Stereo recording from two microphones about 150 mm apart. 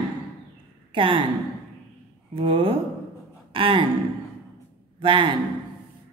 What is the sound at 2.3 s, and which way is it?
Speech, 35° right (ahead or behind).